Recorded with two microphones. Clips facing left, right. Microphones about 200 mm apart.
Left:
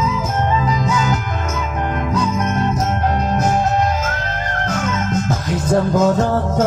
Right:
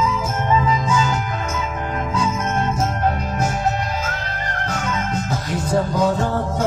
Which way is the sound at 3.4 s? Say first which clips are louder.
Left 5 dB; 40° left (ahead or behind).